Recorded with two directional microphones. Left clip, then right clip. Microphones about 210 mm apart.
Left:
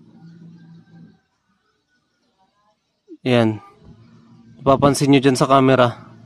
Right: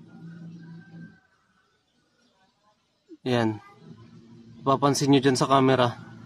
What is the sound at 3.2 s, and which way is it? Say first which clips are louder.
Speech: left 8 dB; 35° left (ahead or behind).